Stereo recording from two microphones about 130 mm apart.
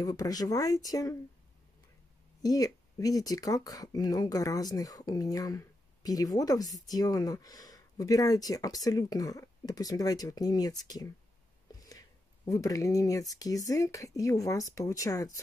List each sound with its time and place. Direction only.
0.0 s speech: 30° left (ahead or behind)
2.4 s speech: 30° left (ahead or behind)